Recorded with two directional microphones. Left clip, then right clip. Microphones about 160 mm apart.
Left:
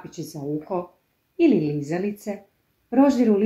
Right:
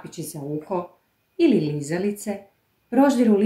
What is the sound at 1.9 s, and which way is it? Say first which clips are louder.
Speech: right 1 dB; 20° right (ahead or behind).